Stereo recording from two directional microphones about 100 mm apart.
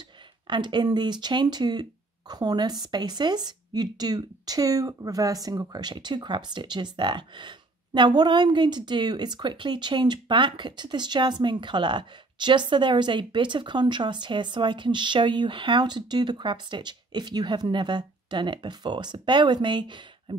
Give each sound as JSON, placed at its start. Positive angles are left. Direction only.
{"t": 0.5, "sound": "speech", "side_deg": -50}